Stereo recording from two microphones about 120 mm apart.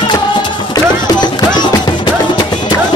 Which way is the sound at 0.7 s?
35° left (ahead or behind).